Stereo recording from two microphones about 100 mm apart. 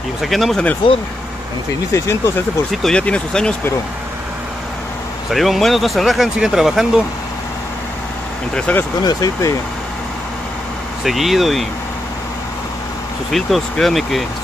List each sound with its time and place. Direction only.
0.2 s speech: centre (ahead or behind)
2.0 s speech: 30° left (ahead or behind)
2.7 s speech: 5° left (ahead or behind)
5.3 s speech: centre (ahead or behind)
8.5 s speech: 15° left (ahead or behind)
9.0 s speech: 35° left (ahead or behind)
11.1 s speech: centre (ahead or behind)
13.3 s speech: centre (ahead or behind)